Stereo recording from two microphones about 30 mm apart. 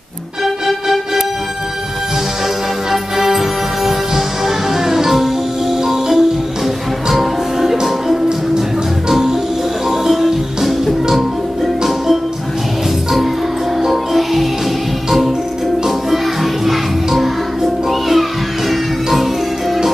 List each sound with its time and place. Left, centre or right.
0.7 s music: centre
2.9 s music: centre
9.1 s music: centre
14.1 s music: centre
16.6 s music: centre